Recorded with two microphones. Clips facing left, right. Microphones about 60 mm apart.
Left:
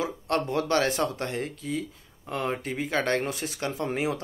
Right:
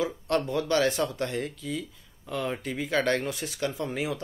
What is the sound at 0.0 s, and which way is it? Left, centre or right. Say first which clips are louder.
Speech: even; left.